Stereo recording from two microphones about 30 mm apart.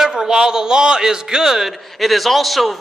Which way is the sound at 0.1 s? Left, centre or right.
Right.